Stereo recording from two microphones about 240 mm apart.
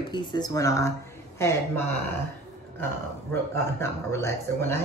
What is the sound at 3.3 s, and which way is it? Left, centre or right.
A man's voice, centre.